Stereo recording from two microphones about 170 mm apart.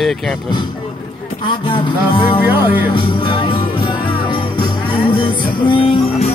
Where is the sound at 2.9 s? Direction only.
30° left (ahead or behind).